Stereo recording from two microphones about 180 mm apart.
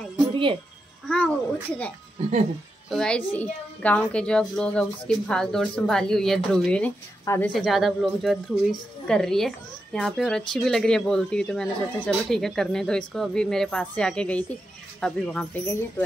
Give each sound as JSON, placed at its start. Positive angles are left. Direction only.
{"t": 0.3, "sound": "music", "side_deg": -30}
{"t": 1.0, "sound": "a child's voice", "side_deg": 5}
{"t": 2.9, "sound": "a child's voice", "side_deg": 5}